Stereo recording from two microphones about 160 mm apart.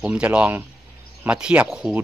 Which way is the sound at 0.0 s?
5° right (ahead or behind).